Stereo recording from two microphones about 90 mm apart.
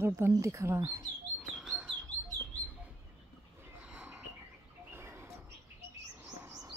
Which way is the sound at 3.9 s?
15° right (ahead or behind).